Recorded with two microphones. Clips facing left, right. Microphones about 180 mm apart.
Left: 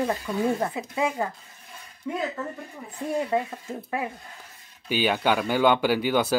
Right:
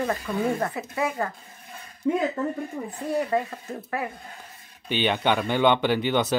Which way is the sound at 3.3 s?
15° left (ahead or behind).